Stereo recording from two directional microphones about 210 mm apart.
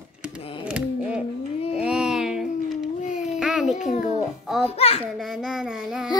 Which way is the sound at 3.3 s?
5° right (ahead or behind).